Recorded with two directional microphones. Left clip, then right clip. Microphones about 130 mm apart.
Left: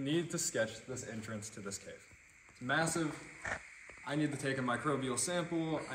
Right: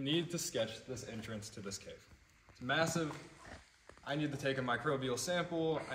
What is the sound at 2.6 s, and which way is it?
Speech, 10° right (ahead or behind).